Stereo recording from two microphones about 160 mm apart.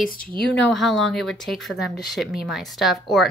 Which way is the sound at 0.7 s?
Centre (ahead or behind).